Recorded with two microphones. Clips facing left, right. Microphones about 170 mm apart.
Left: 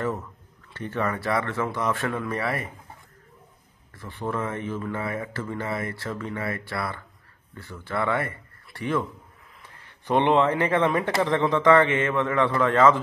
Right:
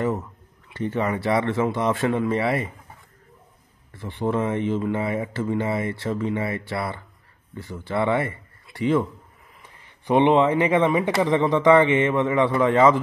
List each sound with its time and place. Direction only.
0.7 s speech: 15° right (ahead or behind)
4.0 s speech: 20° right (ahead or behind)